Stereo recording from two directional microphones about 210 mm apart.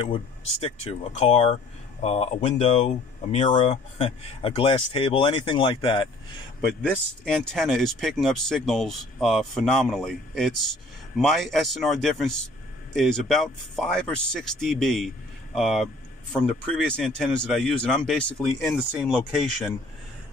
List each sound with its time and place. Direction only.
0.0 s speech: 25° left (ahead or behind)
6.8 s speech: 5° left (ahead or behind)